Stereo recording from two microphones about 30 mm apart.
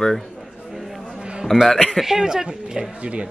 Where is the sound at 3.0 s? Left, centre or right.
Right.